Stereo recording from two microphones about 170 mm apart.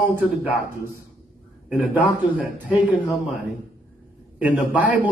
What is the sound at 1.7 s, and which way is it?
A man's voice, 5° right (ahead or behind).